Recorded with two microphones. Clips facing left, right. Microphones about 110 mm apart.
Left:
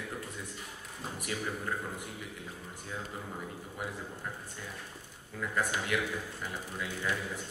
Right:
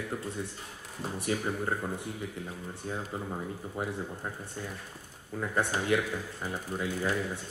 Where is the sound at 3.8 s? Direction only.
30° right (ahead or behind).